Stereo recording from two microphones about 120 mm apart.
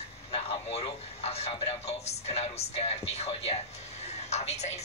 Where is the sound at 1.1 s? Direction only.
60° left (ahead or behind).